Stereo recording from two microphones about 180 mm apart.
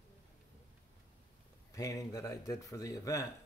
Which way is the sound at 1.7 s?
20° left (ahead or behind).